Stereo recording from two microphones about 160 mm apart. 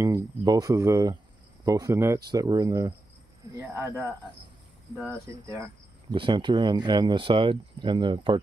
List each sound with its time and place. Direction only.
0.0 s speech: 20° right (ahead or behind)
6.1 s speech: 30° right (ahead or behind)